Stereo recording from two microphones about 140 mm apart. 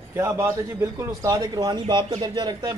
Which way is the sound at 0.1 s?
20° right (ahead or behind).